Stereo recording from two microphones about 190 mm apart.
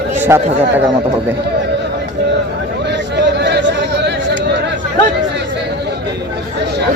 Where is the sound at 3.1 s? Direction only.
65° right (ahead or behind).